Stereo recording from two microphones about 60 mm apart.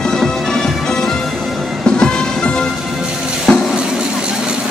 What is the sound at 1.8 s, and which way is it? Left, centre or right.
Music, centre.